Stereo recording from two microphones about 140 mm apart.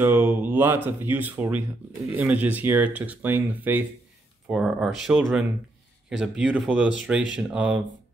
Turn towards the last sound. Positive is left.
turn(degrees=-10)  # may be behind; listen again after turning